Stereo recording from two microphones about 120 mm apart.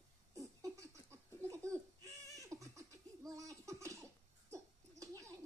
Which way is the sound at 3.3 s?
25° right (ahead or behind).